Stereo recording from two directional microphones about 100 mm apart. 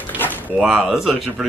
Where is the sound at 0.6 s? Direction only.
5° right (ahead or behind).